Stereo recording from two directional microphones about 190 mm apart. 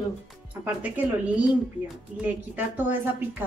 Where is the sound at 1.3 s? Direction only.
5° right (ahead or behind).